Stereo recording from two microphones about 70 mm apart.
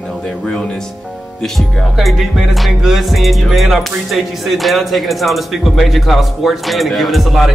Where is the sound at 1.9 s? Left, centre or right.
Centre.